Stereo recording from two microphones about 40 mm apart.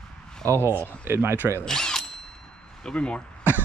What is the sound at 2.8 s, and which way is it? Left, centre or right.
Speech, left.